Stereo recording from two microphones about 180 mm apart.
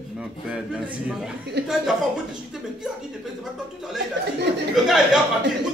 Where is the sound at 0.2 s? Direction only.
5° right (ahead or behind).